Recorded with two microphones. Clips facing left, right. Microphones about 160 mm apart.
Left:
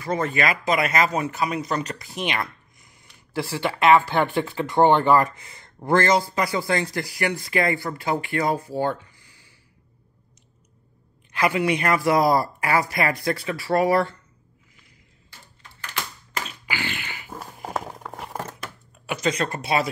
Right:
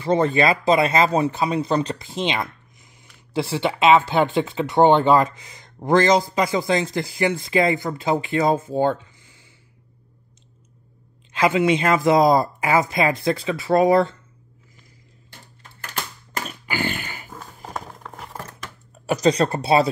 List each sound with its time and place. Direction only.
0.0 s speech: 30° right (ahead or behind)
11.3 s speech: 20° right (ahead or behind)
15.9 s typewriter: 45° right (ahead or behind)
18.0 s crumpling: 10° left (ahead or behind)
19.0 s speech: 35° right (ahead or behind)